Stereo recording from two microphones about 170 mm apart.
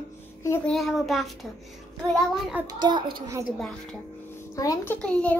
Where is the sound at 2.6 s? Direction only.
10° right (ahead or behind).